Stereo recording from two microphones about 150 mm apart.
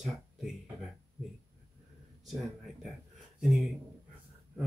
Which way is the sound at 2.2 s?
Centre (ahead or behind).